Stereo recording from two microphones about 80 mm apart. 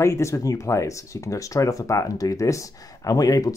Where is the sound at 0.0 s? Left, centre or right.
Left.